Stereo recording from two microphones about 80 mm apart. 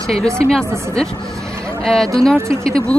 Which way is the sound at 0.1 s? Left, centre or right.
Centre.